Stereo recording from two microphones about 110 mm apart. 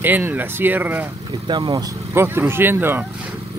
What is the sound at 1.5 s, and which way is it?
Speech, 40° right (ahead or behind).